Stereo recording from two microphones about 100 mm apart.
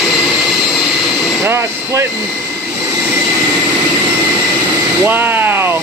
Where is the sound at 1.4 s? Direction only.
25° right (ahead or behind).